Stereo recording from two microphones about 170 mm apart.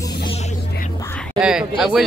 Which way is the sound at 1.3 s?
5° right (ahead or behind).